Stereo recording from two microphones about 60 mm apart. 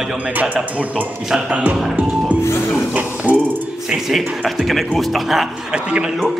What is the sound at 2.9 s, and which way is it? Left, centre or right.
Mechanisms, right.